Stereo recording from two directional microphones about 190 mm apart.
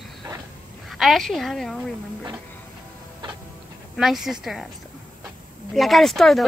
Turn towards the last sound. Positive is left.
turn(degrees=0)  # may be behind; listen again after turning